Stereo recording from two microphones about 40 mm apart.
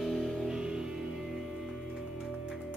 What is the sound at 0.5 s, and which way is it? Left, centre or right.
Music, centre.